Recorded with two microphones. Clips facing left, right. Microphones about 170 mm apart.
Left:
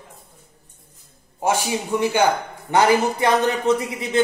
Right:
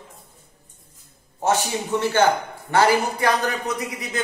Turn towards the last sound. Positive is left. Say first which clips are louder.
# left 7 dB
turn(degrees=25)  # may be behind; listen again after turning